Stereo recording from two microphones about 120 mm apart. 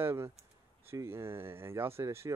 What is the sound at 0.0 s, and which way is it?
Speech, 20° right (ahead or behind).